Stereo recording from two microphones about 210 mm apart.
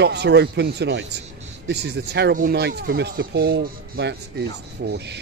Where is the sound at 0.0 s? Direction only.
55° right (ahead or behind).